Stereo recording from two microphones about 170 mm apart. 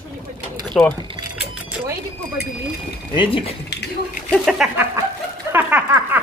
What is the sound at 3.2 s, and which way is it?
Speech, 30° left (ahead or behind).